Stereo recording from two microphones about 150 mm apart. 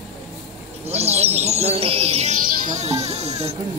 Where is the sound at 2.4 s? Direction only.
55° right (ahead or behind).